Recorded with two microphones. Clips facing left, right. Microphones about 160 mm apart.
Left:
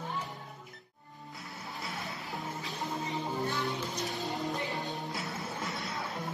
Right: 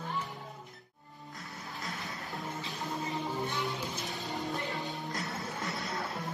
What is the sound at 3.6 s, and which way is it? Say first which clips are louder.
Music: left 2 dB; centre (ahead or behind).